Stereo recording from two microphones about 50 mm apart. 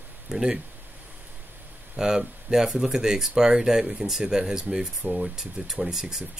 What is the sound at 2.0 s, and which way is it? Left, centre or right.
Speech, centre.